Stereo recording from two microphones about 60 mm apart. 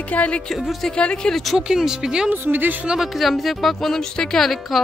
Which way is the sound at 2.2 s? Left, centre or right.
Right.